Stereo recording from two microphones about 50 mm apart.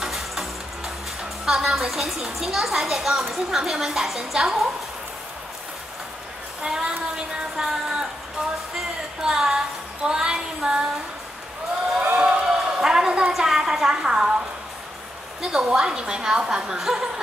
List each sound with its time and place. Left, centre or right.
0.0 s music: centre
1.4 s speech: centre
6.6 s speech: centre
9.2 s speech: centre
12.0 s a sound: right
12.4 s a sound: centre
15.4 s speech: centre